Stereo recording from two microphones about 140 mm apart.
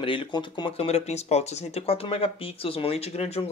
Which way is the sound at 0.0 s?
35° left (ahead or behind).